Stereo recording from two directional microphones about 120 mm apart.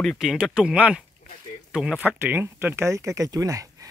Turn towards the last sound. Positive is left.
turn(degrees=-30)  # may be behind; listen again after turning